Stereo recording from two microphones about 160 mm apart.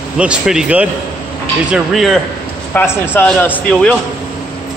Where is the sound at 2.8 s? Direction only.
15° left (ahead or behind).